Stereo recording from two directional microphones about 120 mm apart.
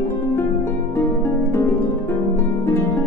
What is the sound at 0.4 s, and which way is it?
Harp, 20° left (ahead or behind).